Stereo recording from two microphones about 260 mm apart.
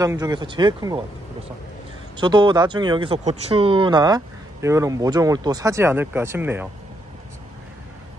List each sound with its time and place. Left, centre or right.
0.0 s speech: centre
2.1 s speech: centre